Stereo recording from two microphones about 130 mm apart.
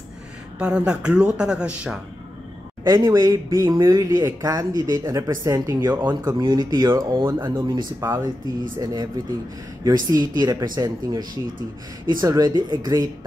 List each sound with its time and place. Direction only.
0.6 s speech: 5° right (ahead or behind)
2.8 s speech: 25° right (ahead or behind)